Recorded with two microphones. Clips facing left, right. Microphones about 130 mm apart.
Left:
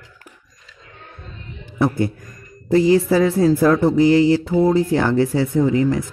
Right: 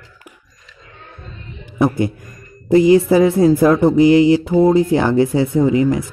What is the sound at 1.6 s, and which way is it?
Speech, 15° right (ahead or behind).